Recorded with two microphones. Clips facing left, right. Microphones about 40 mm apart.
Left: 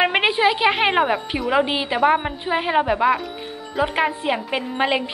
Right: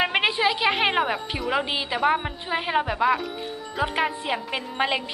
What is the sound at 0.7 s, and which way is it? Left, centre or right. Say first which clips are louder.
A woman's voice: left 4 dB; centre.